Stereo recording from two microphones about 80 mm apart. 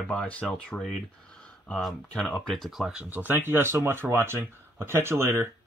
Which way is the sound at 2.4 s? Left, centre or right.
Centre.